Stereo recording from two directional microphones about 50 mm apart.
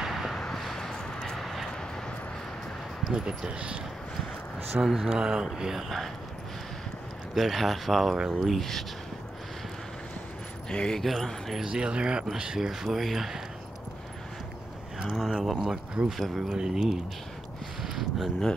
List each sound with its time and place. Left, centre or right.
0.0 s a sound: centre
0.4 s vehicle: centre
3.1 s speech: centre
4.8 s speech: centre
5.2 s speech: centre
7.3 s speech: centre
10.7 s speech: centre
11.0 s speech: centre
11.6 s speech: centre
12.5 s speech: centre
15.0 s speech: centre
17.8 s a sound: centre